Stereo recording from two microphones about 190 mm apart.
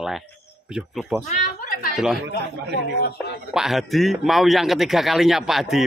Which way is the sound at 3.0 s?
60° left (ahead or behind).